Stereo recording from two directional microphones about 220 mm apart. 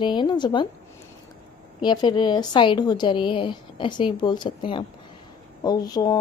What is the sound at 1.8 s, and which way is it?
Speech, 20° left (ahead or behind).